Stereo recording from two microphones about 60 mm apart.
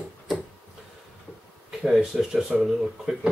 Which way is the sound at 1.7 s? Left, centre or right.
Centre.